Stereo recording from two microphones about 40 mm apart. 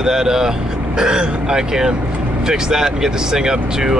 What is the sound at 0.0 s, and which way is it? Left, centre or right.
Speech, centre.